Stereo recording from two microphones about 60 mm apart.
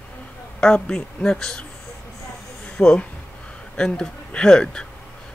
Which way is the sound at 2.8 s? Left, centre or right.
Centre.